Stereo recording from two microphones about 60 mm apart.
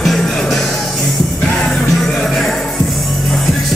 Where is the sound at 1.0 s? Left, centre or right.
Left.